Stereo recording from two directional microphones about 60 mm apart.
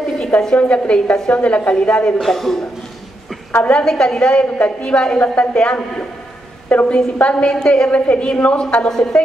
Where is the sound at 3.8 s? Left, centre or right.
Centre.